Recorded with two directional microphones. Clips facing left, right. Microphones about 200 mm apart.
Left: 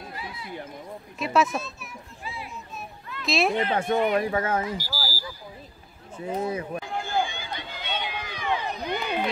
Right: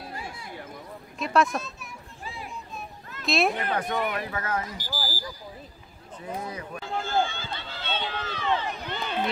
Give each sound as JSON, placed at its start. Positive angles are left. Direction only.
{"t": 0.1, "sound": "a sound", "side_deg": -45}
{"t": 1.1, "sound": "speech", "side_deg": 0}
{"t": 2.2, "sound": "a sound", "side_deg": -45}
{"t": 3.3, "sound": "speech", "side_deg": 0}
{"t": 3.5, "sound": "speech", "side_deg": 25}
{"t": 4.7, "sound": "smoke detector", "side_deg": -50}
{"t": 6.2, "sound": "speech", "side_deg": 25}
{"t": 6.9, "sound": "run", "side_deg": 15}